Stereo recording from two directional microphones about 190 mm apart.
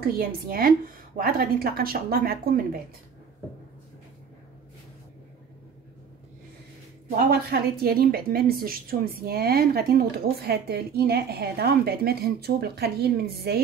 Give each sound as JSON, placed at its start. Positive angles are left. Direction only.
{"t": 0.0, "sound": "a woman's voice", "side_deg": -50}
{"t": 7.2, "sound": "a woman's voice", "side_deg": -55}